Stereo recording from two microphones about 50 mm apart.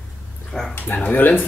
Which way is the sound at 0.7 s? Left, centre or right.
Left.